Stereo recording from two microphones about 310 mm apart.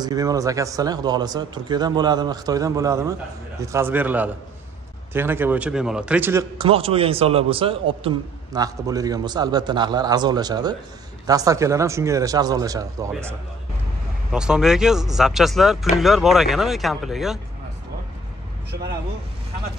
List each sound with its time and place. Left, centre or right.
0.0 s speech: centre